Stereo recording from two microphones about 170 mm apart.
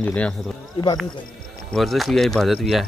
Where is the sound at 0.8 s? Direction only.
35° left (ahead or behind).